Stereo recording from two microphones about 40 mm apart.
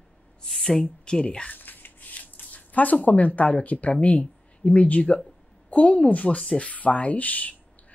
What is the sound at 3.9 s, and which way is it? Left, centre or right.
Speech, left.